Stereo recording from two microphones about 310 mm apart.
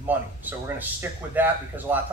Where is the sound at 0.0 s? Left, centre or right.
Centre.